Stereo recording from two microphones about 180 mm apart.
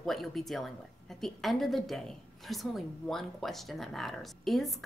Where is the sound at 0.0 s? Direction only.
Centre (ahead or behind).